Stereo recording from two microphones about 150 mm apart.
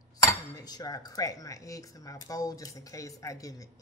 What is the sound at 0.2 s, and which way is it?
Speech, 25° left (ahead or behind).